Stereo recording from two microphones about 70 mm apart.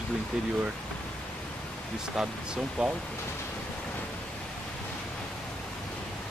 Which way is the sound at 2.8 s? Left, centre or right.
Centre.